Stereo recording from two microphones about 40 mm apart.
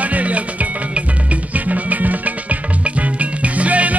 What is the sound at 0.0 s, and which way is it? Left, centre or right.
Music, right.